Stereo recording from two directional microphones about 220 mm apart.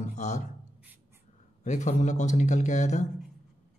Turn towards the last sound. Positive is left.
turn(degrees=35)  # may be behind; listen again after turning